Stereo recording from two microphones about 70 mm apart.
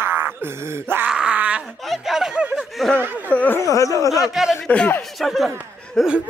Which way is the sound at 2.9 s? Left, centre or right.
Right.